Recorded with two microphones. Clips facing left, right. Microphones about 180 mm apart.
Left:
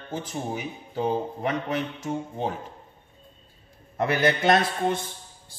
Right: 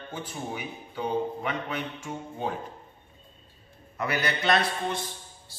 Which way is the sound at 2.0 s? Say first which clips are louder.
Left 6 dB; 40° left (ahead or behind).